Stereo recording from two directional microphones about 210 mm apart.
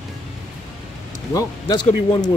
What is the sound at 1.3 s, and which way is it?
Speech, 15° left (ahead or behind).